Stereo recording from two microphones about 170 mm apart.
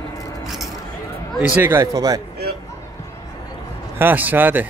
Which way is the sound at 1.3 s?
10° right (ahead or behind).